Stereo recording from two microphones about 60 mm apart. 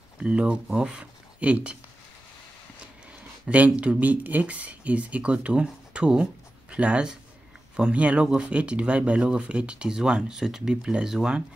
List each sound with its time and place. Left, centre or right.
0.2 s speech: centre
2.8 s speech: right